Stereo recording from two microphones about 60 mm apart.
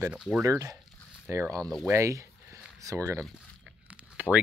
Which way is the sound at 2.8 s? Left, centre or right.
Right.